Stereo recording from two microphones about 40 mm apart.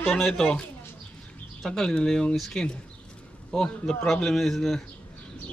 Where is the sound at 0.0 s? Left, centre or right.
Centre.